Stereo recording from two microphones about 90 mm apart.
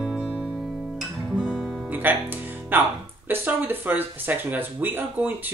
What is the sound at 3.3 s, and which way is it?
Speech, 20° right (ahead or behind).